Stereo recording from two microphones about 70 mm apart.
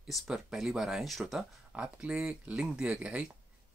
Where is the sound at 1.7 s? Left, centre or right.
Centre.